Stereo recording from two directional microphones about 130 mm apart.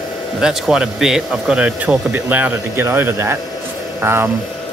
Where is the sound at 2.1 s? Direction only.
15° right (ahead or behind).